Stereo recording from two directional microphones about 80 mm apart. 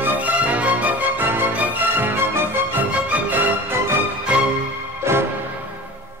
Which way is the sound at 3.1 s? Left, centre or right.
Right.